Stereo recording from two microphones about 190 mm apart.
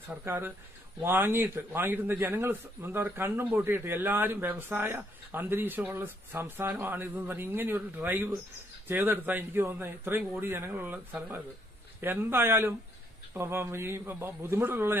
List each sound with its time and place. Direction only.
0.1 s a man's voice: 10° right (ahead or behind)